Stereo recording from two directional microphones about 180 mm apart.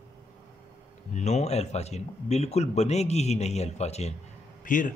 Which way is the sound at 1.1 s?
40° left (ahead or behind).